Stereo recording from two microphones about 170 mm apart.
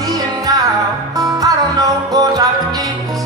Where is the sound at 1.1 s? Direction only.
20° right (ahead or behind).